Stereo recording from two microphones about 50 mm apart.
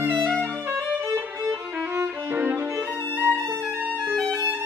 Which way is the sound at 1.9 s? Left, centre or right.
Right.